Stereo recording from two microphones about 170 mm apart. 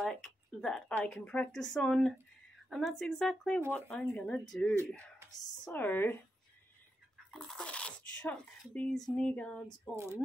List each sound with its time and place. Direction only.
0.0 s speech: 5° left (ahead or behind)
4.7 s speech: 15° right (ahead or behind)
5.3 s speech: 10° left (ahead or behind)
7.2 s speech: 5° left (ahead or behind)
9.9 s speech: 15° right (ahead or behind)